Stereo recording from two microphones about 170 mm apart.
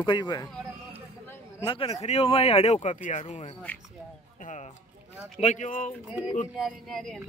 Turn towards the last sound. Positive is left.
turn(degrees=0)  # may be behind; listen again after turning